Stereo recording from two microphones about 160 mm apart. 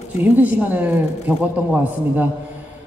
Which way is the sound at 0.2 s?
10° right (ahead or behind).